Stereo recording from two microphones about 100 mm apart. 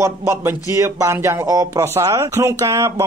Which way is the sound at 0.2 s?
25° right (ahead or behind).